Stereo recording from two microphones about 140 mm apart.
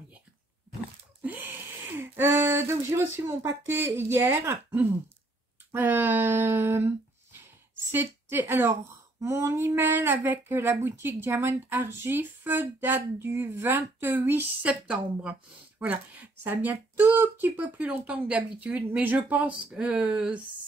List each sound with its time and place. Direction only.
1.2 s a sound: 15° right (ahead or behind)
2.0 s speech: 15° right (ahead or behind)
7.9 s speech: 15° right (ahead or behind)